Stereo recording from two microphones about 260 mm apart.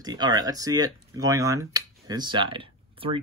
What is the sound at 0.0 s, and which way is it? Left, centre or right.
Speech, centre.